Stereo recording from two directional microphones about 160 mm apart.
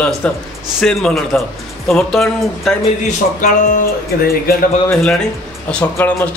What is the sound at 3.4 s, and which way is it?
Music, 55° left (ahead or behind).